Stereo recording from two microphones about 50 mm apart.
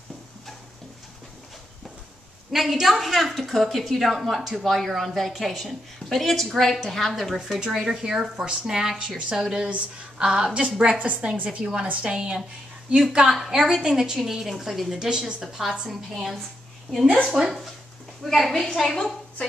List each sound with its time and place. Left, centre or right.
2.5 s a woman's voice: centre
7.7 s a woman's voice: centre
9.7 s a woman's voice: right
15.9 s a woman's voice: centre
18.2 s a woman's voice: centre